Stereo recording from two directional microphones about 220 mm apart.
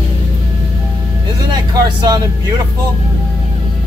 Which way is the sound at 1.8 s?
20° right (ahead or behind).